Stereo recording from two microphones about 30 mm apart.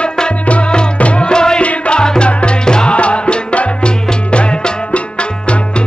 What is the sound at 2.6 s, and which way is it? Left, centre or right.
Music, left.